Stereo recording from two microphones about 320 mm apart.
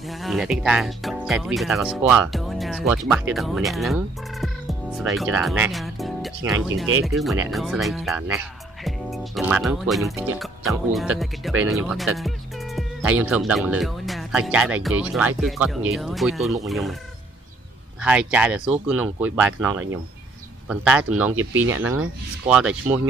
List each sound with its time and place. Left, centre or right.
0.1 s speech: centre
18.0 s speech: centre
21.4 s speech: right
22.5 s speech: centre